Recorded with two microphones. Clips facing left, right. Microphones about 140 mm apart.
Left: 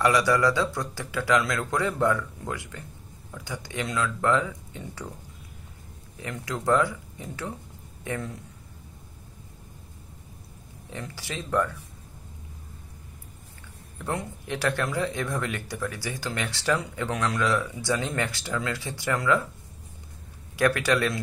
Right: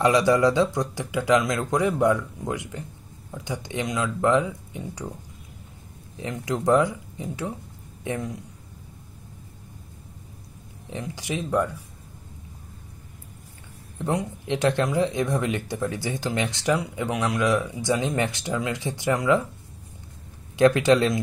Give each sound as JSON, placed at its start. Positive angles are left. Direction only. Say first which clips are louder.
{"t": 0.0, "sound": "speech", "louder": "right 3 dB", "side_deg": -20}
{"t": 6.1, "sound": "a man's voice", "louder": "right 5 dB", "side_deg": -20}
{"t": 10.9, "sound": "speech", "louder": "right 6 dB", "side_deg": -20}
{"t": 13.9, "sound": "speech", "louder": "right 5 dB", "side_deg": -20}
{"t": 20.5, "sound": "speech", "louder": "right 6 dB", "side_deg": -20}